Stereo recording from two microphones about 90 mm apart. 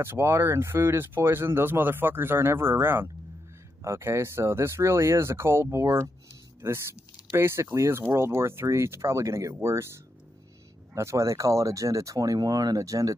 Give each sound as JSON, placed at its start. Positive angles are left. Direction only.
{"t": 0.0, "sound": "speech", "side_deg": -25}
{"t": 11.0, "sound": "speech", "side_deg": -35}